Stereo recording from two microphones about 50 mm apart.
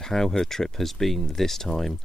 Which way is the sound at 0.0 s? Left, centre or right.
Centre.